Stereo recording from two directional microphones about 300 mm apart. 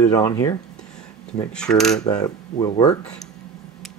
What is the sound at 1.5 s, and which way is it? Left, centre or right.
Coin, centre.